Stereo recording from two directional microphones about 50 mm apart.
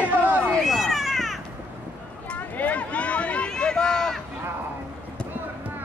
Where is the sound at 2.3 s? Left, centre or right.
Left; by 4.2 s centre.